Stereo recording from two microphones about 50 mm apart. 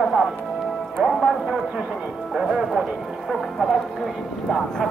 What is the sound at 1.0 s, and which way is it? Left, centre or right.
Speech, centre.